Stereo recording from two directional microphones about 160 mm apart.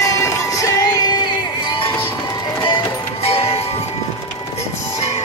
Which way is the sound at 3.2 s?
35° left (ahead or behind).